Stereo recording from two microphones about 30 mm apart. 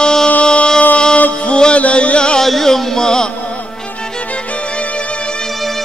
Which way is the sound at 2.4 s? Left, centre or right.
Centre.